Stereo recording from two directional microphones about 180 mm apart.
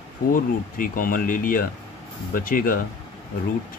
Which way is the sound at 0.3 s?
50° left (ahead or behind).